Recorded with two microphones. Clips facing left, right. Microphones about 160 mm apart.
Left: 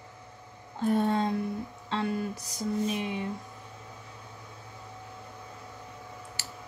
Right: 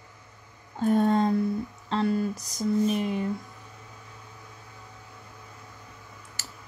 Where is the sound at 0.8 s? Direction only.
45° right (ahead or behind).